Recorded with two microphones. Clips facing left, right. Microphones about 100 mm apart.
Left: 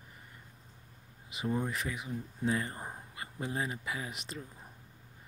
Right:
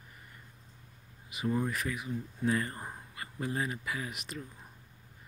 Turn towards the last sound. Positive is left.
turn(degrees=30)  # may be behind; listen again after turning